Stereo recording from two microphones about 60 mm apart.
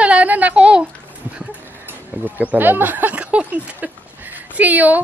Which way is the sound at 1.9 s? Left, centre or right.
Right.